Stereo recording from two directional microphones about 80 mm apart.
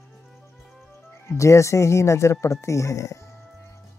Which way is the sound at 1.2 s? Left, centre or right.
Left.